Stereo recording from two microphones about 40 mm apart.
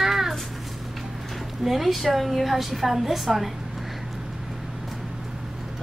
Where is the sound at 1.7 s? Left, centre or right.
Centre.